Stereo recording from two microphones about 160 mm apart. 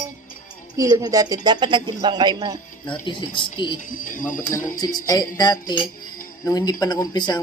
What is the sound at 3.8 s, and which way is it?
Speech, 55° left (ahead or behind).